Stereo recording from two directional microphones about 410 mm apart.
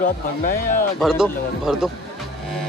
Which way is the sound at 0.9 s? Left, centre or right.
Centre.